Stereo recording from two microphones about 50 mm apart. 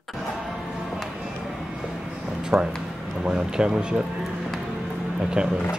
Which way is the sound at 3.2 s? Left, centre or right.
Centre.